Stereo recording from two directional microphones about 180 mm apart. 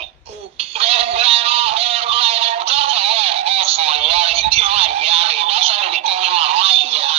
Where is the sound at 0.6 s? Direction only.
35° right (ahead or behind).